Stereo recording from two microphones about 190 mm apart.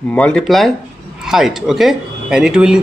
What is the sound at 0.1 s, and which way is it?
A man's voice, 5° left (ahead or behind).